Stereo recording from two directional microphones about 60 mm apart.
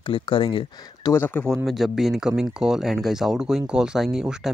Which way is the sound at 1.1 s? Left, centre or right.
Left.